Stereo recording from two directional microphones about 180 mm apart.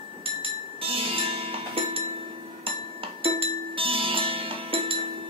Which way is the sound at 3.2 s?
30° right (ahead or behind).